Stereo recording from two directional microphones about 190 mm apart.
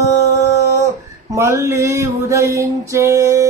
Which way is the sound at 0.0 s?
15° right (ahead or behind).